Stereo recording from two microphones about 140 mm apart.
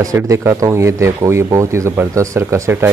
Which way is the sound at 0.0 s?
25° right (ahead or behind).